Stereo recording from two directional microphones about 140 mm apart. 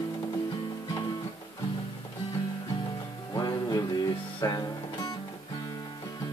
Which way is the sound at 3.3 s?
30° left (ahead or behind).